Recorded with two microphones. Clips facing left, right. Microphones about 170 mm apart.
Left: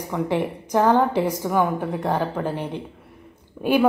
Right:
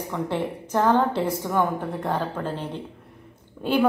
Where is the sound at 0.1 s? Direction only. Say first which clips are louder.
Left 4 dB; 15° left (ahead or behind).